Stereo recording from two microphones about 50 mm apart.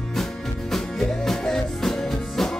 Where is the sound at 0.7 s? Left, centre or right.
Centre.